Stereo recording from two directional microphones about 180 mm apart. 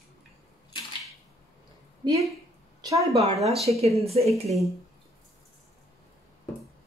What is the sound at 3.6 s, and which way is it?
Speech, 35° right (ahead or behind).